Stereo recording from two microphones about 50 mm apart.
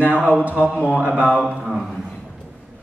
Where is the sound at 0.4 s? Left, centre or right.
Right.